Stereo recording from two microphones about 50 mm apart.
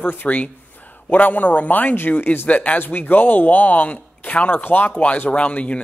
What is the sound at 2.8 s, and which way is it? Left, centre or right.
Speech, left.